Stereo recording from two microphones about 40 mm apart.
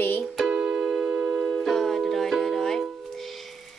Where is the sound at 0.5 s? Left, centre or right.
Centre.